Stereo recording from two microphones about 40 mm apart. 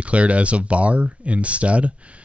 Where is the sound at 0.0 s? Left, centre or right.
Right.